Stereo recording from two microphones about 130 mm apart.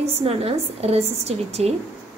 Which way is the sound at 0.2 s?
50° right (ahead or behind).